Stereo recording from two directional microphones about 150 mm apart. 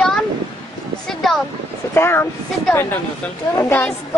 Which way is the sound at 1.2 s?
Centre (ahead or behind).